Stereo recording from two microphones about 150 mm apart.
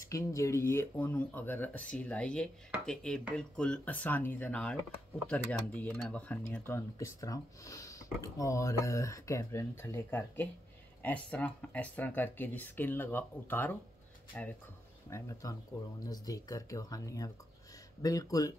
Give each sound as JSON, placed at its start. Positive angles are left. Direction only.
{"t": 0.0, "sound": "speech", "side_deg": 20}